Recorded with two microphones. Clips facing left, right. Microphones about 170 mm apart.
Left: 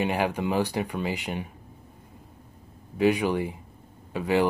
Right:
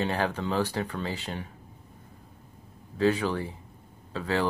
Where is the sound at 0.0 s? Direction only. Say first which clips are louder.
Left 3 dB; 15° left (ahead or behind).